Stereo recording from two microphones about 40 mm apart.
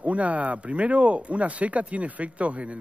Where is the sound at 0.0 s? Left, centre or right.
Right.